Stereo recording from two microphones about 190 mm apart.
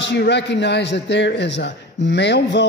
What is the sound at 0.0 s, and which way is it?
A man's voice, 65° left (ahead or behind).